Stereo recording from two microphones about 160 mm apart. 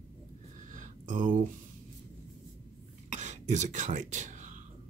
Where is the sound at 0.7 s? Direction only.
50° right (ahead or behind).